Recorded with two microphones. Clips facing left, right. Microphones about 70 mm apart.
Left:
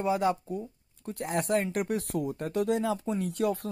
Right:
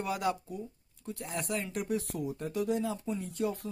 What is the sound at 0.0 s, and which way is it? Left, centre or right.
Speech, left.